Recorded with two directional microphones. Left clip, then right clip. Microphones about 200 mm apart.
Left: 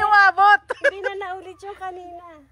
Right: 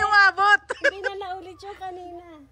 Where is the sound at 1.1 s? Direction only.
50° left (ahead or behind).